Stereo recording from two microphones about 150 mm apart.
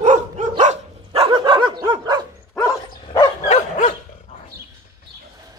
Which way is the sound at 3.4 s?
55° left (ahead or behind).